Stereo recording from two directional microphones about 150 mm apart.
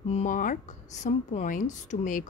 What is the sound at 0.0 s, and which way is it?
Speech, 50° left (ahead or behind).